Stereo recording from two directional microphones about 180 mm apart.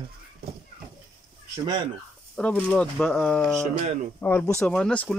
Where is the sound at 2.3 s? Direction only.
5° left (ahead or behind).